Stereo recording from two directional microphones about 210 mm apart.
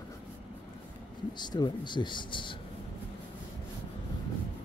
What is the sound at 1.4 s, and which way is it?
Speech, 20° left (ahead or behind).